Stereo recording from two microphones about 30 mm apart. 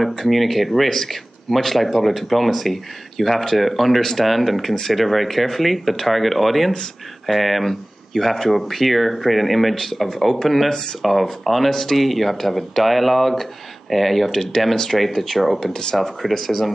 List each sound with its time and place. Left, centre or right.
0.2 s speech: centre
10.7 s speech: left
11.0 s speech: centre
15.7 s speech: left
16.2 s speech: centre